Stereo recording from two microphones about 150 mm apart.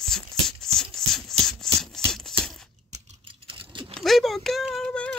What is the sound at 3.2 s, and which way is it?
Typing, 35° right (ahead or behind).